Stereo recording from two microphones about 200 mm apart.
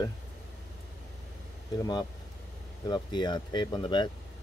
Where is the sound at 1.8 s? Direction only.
20° left (ahead or behind).